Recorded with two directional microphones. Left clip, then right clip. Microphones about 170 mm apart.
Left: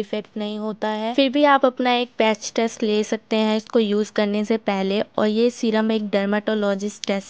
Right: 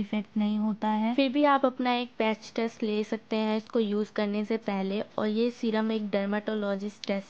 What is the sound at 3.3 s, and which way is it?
Speech, 35° left (ahead or behind).